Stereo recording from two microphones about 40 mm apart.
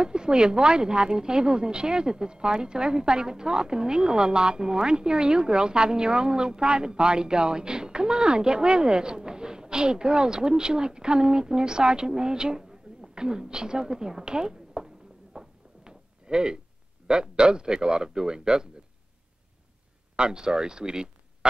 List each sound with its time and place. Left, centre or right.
0.0 s speech: right
15.3 s a sound: centre
17.1 s speech: right
20.2 s speech: centre